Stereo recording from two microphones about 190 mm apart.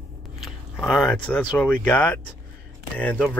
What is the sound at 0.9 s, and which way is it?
Speech, 5° left (ahead or behind).